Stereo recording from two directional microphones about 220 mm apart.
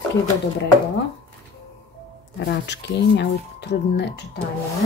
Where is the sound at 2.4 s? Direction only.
50° left (ahead or behind).